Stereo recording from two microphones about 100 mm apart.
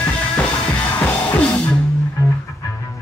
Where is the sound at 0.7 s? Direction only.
15° left (ahead or behind).